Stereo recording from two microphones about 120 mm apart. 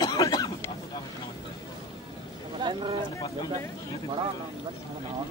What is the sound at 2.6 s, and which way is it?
Speech, 35° right (ahead or behind).